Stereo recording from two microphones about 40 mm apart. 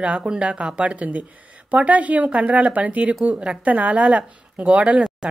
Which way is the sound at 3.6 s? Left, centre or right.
Right.